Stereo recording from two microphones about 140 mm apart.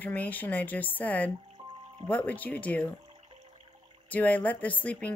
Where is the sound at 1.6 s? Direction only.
25° right (ahead or behind).